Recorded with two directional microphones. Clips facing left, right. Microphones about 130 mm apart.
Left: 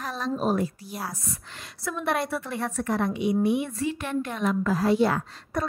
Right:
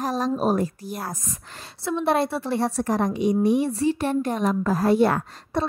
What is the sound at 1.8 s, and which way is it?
A woman's voice, 30° right (ahead or behind).